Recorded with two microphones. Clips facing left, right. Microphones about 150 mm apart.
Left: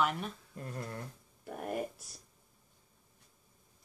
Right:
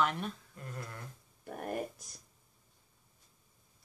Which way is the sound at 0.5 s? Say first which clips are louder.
Left 4 dB; 30° left (ahead or behind).